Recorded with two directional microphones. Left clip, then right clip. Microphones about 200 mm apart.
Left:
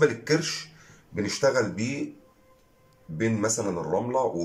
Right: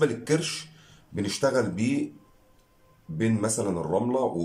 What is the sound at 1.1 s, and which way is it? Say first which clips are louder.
Speech: left 1 dB; 10° right (ahead or behind).